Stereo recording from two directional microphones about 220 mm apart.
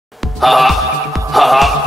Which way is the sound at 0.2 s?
Centre (ahead or behind).